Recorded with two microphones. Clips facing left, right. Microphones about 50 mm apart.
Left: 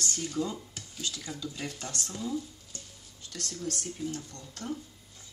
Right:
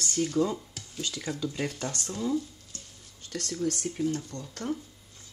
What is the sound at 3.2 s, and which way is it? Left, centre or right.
Speech, right.